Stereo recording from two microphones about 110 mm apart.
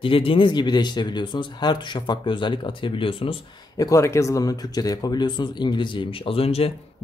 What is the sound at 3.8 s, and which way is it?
Speech, 25° left (ahead or behind).